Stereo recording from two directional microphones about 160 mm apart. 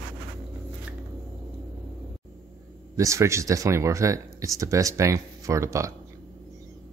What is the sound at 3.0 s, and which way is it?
Speech, 20° right (ahead or behind).